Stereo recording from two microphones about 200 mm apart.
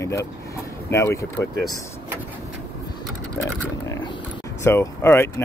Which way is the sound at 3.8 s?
15° left (ahead or behind).